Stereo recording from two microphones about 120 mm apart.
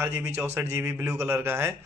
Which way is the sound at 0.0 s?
20° right (ahead or behind).